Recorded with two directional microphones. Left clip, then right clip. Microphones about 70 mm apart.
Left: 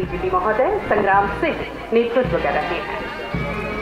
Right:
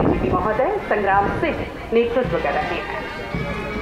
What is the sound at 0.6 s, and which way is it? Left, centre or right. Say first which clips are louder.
Speech: left 2 dB; left.